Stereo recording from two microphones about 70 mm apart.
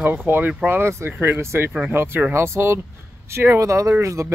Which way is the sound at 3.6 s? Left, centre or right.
Right.